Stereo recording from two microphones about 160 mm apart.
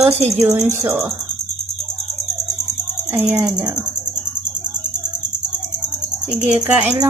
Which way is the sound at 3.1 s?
15° right (ahead or behind).